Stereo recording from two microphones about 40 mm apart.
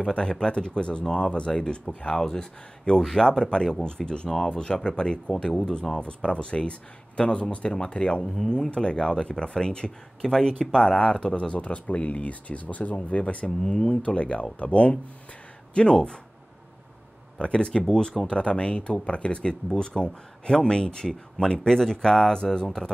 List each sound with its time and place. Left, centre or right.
0.0 s speech: left
13.6 s speech: centre
13.8 s speech: left
17.4 s speech: left